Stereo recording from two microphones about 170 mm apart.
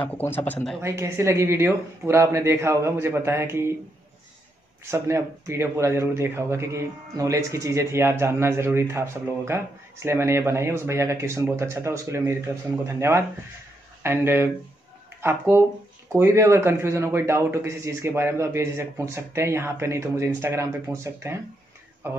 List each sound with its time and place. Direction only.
0.0 s speech: 10° left (ahead or behind)
0.7 s speech: 15° right (ahead or behind)
4.9 s speech: 15° right (ahead or behind)